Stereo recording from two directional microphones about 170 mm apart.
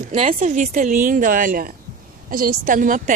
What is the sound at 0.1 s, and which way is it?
Speech, 45° right (ahead or behind).